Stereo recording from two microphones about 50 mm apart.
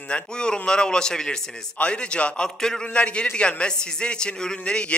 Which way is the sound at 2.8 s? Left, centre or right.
Left.